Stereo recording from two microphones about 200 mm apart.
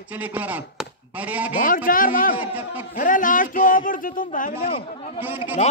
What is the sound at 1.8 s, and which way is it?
A man's voice, 45° left (ahead or behind).